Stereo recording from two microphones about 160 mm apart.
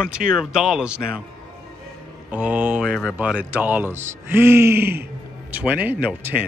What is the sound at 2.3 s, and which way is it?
Speech, 10° right (ahead or behind).